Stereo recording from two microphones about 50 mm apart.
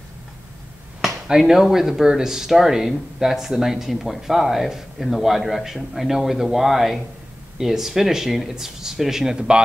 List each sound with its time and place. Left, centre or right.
1.5 s speech: centre